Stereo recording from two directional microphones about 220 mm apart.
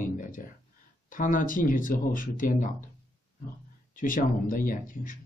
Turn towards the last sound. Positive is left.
turn(degrees=40)  # may be behind; listen again after turning